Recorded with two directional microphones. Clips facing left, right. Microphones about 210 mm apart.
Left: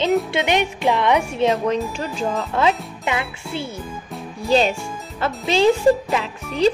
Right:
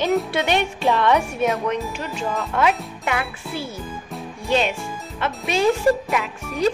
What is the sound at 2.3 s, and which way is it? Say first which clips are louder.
A child's voice: left 1 dB; 30° left (ahead or behind).